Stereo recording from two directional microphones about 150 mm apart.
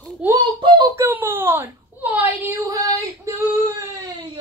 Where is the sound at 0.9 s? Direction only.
15° right (ahead or behind).